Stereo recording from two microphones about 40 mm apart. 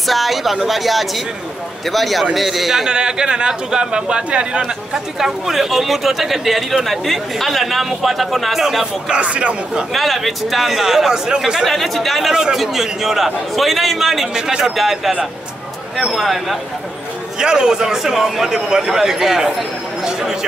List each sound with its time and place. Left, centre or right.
0.0 s speech: centre
2.9 s a man's voice: centre
4.9 s speech: centre
9.1 s speech: right
9.9 s a man's voice: centre
11.6 s speech: centre
17.4 s a man's voice: centre